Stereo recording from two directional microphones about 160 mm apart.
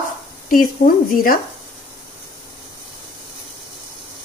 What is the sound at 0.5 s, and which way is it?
Speech, 65° left (ahead or behind).